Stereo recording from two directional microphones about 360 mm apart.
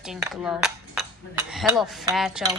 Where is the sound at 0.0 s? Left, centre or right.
Centre.